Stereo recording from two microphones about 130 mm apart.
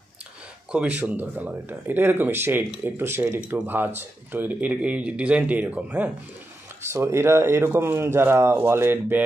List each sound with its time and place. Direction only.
0.7 s speech: 10° right (ahead or behind)